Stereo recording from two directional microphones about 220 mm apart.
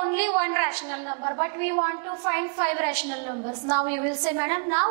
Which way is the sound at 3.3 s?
25° right (ahead or behind).